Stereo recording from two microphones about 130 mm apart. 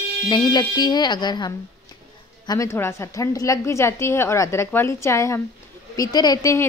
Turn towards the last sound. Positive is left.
turn(degrees=25)  # may be behind; listen again after turning